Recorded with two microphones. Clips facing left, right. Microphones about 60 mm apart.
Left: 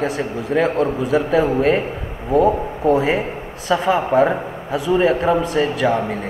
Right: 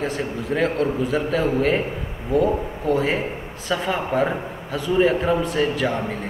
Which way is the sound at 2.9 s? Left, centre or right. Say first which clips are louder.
Left 4 dB; centre.